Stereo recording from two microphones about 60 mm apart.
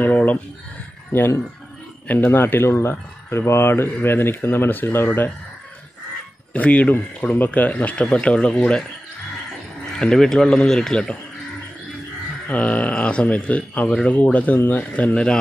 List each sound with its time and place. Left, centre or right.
0.0 s a sound: left
1.1 s speech: left
6.5 s speech: left
9.9 s speech: centre
12.4 s speech: left